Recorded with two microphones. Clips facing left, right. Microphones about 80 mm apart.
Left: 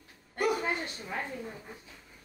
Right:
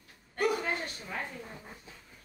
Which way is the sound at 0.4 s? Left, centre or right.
Centre.